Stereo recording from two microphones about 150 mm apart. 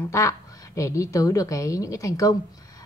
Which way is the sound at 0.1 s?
20° left (ahead or behind).